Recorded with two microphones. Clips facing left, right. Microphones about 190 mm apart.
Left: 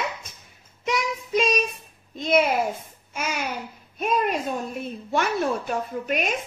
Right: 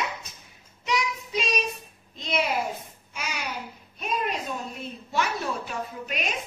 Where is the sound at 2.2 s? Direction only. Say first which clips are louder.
Left 6 dB; 50° left (ahead or behind).